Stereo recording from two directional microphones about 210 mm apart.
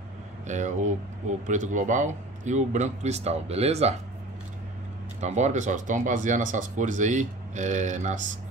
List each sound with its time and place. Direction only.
0.5 s speech: 35° right (ahead or behind)
5.2 s speech: 35° right (ahead or behind)